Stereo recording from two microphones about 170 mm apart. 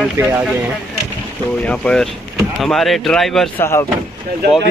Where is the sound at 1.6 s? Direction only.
5° left (ahead or behind).